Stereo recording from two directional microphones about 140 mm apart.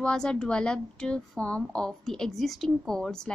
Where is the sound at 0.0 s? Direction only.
5° left (ahead or behind).